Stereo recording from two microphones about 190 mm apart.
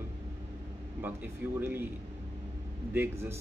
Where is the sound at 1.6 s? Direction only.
10° right (ahead or behind).